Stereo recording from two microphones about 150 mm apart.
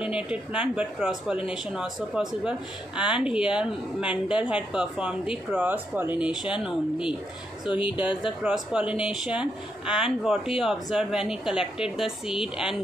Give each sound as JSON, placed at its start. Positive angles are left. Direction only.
{"t": 0.0, "sound": "speech", "side_deg": -5}
{"t": 7.7, "sound": "speech", "side_deg": 35}
{"t": 8.5, "sound": "speech", "side_deg": -5}